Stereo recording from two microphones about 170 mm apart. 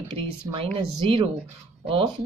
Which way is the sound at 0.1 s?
30° right (ahead or behind).